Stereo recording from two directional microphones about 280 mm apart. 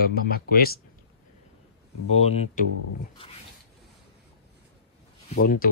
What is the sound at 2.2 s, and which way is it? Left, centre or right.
Speech, left.